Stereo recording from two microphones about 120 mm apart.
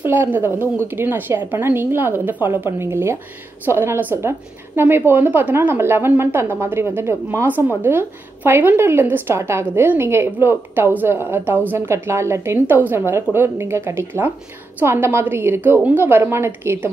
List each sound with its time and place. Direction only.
0.0 s a woman's voice: 15° right (ahead or behind)